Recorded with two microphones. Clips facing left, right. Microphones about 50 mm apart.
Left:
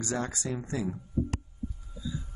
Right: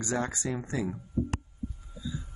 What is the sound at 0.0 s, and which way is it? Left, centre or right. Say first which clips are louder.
Speech: right 2 dB; right.